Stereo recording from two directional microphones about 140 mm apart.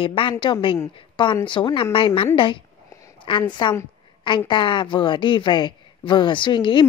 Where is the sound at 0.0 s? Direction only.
40° left (ahead or behind).